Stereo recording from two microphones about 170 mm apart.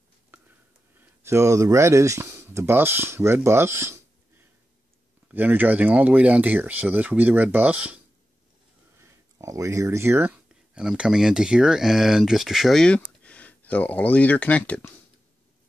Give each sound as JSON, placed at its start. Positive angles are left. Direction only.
{"t": 0.9, "sound": "speech", "side_deg": -15}
{"t": 5.3, "sound": "speech", "side_deg": -10}
{"t": 9.0, "sound": "speech", "side_deg": -20}